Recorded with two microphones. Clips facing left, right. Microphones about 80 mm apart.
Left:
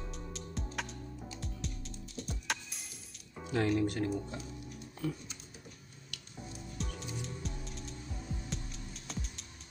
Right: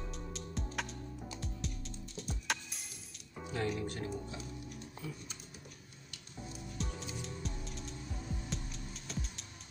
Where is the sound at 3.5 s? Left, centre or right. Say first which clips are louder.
Left 6 dB; left.